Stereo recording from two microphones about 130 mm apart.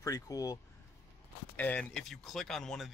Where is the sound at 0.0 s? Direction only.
25° left (ahead or behind).